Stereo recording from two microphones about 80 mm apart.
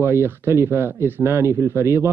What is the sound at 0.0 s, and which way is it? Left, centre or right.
Speech, right.